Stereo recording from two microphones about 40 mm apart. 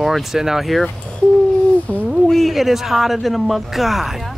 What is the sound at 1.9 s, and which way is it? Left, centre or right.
Speech, left.